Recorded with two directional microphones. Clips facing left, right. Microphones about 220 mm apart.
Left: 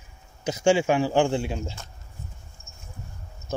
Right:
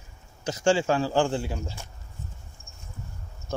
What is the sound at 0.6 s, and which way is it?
Speech, 20° left (ahead or behind).